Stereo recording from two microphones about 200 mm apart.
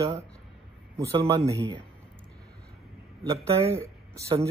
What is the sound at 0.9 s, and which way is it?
Speech, 20° right (ahead or behind).